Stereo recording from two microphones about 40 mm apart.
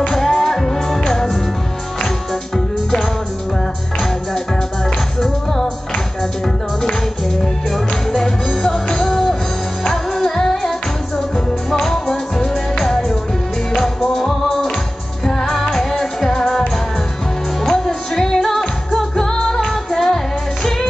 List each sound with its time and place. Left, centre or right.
0.1 s music: centre
5.2 s music: centre
7.7 s music: centre
17.6 s music: centre